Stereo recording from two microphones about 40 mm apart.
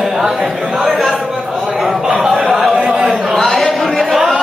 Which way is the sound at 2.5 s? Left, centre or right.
Centre.